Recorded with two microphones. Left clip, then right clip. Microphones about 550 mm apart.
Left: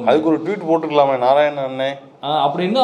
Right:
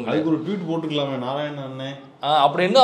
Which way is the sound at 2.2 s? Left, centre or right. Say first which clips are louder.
Even; right.